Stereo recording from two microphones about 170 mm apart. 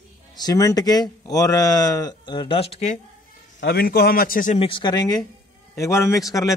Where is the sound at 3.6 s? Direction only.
70° left (ahead or behind).